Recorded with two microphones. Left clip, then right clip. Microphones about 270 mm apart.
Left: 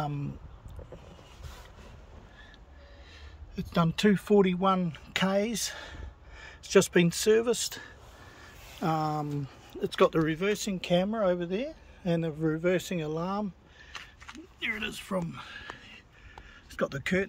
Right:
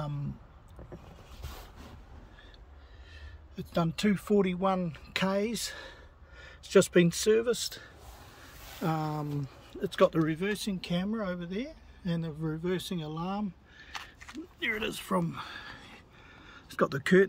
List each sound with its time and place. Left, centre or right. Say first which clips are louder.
3.5 s speech: left 2 dB; centre
13.9 s a sound: right 2 dB; centre
16.6 s speech: right 2 dB; centre